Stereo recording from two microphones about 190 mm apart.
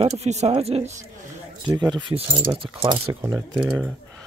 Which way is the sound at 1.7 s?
20° right (ahead or behind).